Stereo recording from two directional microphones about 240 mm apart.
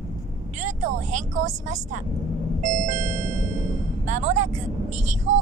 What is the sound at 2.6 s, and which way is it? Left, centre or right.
Music, right.